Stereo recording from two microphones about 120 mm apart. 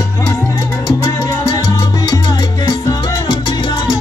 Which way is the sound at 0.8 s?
30° left (ahead or behind).